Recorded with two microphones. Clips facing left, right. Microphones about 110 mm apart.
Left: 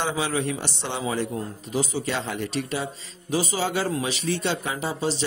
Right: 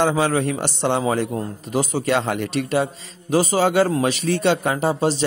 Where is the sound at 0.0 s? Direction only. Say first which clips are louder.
Right 7 dB; 50° right (ahead or behind).